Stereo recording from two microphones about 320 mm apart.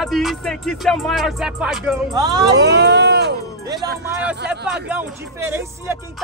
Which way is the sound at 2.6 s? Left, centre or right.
Right.